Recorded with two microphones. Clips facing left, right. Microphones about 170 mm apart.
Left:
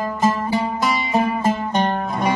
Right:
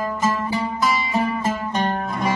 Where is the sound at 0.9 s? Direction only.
20° left (ahead or behind).